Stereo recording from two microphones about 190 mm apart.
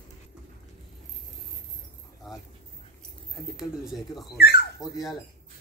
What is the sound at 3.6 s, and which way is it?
Speech, centre (ahead or behind).